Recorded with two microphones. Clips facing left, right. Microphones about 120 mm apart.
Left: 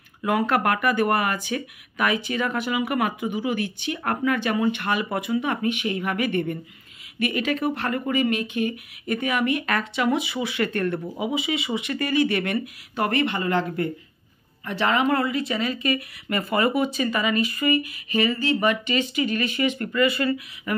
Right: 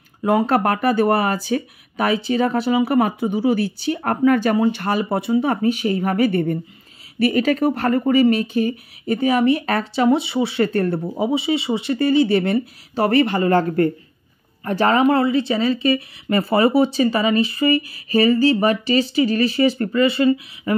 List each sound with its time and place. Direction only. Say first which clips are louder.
0.2 s speech: right 5 dB; 30° right (ahead or behind)
15.1 s speech: right 6 dB; 30° right (ahead or behind)